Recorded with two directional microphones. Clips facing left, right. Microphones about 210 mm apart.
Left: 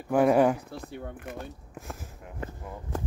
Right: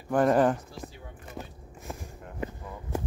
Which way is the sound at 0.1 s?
10° left (ahead or behind).